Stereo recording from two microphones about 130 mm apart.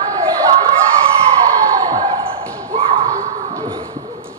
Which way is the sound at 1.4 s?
25° right (ahead or behind).